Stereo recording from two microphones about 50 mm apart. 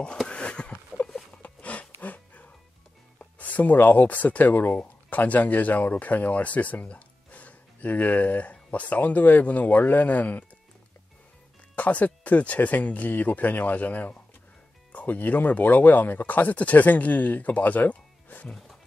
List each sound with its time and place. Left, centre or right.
0.3 s a sound: centre
3.2 s speech: left
11.7 s speech: left